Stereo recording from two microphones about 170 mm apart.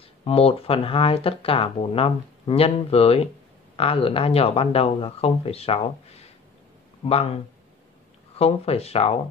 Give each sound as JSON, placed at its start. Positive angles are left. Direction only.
{"t": 0.2, "sound": "speech", "side_deg": 35}
{"t": 8.4, "sound": "speech", "side_deg": 35}